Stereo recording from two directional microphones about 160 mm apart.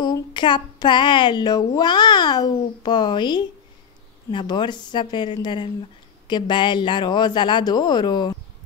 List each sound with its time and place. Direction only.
0.0 s speech: 30° left (ahead or behind)